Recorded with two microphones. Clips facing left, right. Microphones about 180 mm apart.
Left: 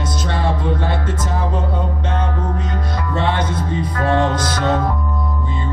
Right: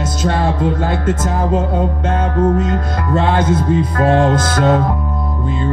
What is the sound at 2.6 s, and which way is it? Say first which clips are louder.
Music: right 6 dB; 50° right (ahead or behind).